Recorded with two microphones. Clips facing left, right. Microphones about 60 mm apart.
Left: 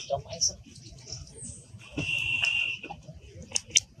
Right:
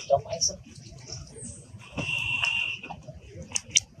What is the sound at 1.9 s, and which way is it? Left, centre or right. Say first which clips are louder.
Fire alarm: even; right.